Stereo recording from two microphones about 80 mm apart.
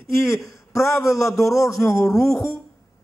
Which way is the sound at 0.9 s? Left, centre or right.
Left.